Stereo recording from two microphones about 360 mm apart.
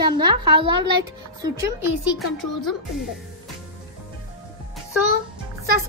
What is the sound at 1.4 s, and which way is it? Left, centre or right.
Speech, centre.